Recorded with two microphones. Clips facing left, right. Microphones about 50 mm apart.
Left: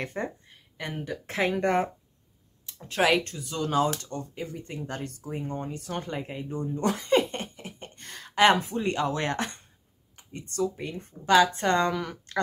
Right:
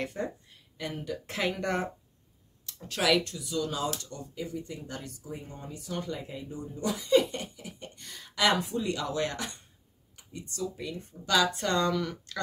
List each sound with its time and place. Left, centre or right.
0.0 s speech: left